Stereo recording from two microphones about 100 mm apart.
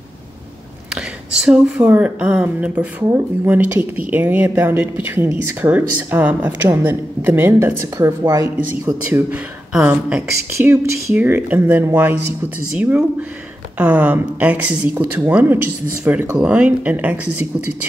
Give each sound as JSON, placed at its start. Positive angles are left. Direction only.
{"t": 0.9, "sound": "a sound", "side_deg": -5}
{"t": 1.9, "sound": "speech", "side_deg": -15}
{"t": 7.5, "sound": "speech", "side_deg": -30}
{"t": 9.3, "sound": "speech", "side_deg": -10}